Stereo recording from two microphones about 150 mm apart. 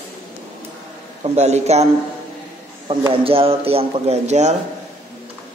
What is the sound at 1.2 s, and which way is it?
Speech, 50° right (ahead or behind).